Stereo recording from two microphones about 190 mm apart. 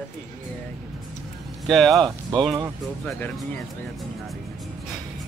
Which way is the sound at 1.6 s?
Centre (ahead or behind).